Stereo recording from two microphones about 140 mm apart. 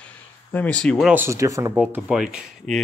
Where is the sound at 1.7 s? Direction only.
5° right (ahead or behind).